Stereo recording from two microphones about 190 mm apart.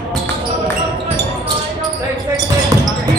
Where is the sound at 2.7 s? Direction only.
15° right (ahead or behind).